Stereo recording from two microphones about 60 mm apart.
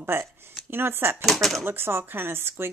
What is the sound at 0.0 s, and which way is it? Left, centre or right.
Speech, right.